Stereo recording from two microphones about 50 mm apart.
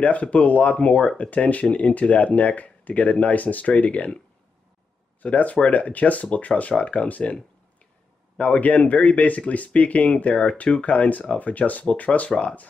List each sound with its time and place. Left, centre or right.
0.0 s speech: left
5.2 s speech: left
8.4 s speech: left